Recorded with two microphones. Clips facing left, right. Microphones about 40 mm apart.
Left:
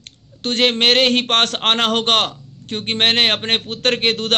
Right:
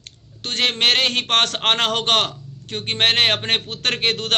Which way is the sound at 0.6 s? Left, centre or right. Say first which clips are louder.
Left 4 dB; left.